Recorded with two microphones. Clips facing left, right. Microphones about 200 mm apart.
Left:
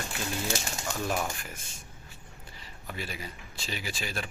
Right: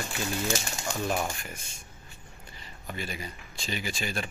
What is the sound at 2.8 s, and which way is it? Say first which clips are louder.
Speech: right 2 dB; 5° left (ahead or behind).